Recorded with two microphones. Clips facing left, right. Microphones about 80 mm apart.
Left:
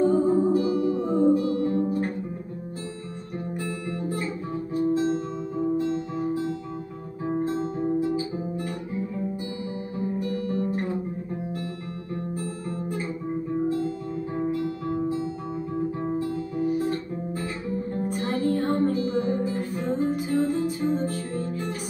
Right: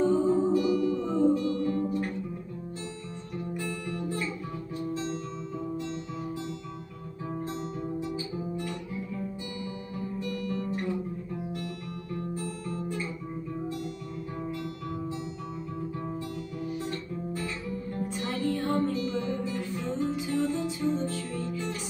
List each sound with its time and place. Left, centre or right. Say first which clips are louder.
0.0 s music: left 3 dB; left
0.6 s music: left 2 dB; left
1.0 s music: left 4 dB; left
1.3 s music: left 4 dB; left
3.6 s music: left 3 dB; left
4.7 s guitar: left 10 dB; left
12.4 s guitar: left 3 dB; left
13.5 s music: left 10 dB; left
15.7 s guitar: left 9 dB; left
18.0 s music: left 4 dB; left
20.8 s music: left 3 dB; left